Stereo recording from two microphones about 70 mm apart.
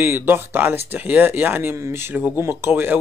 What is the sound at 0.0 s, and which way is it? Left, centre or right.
Speech, right.